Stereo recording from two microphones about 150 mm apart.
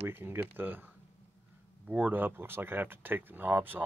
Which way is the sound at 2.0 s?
15° right (ahead or behind).